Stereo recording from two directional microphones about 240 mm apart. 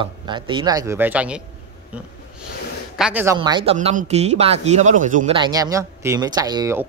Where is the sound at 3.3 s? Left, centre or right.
Centre.